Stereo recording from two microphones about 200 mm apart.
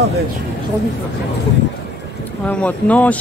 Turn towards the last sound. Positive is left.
turn(degrees=5)  # may be behind; listen again after turning